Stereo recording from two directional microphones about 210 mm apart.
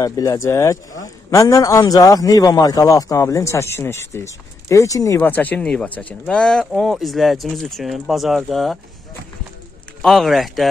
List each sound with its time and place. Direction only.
0.0 s a man's voice: 15° left (ahead or behind)
10.0 s speech: centre (ahead or behind)